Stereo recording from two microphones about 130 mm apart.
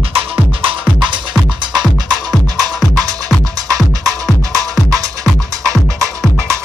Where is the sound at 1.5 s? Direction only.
35° right (ahead or behind).